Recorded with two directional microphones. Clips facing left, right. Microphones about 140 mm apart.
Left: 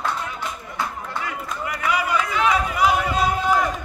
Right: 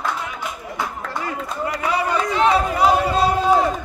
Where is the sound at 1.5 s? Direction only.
30° right (ahead or behind).